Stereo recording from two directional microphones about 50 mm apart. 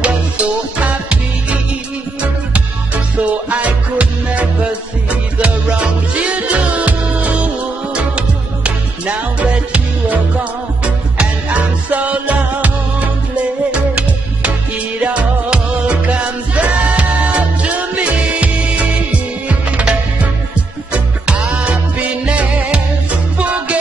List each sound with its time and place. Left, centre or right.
0.0 s music: right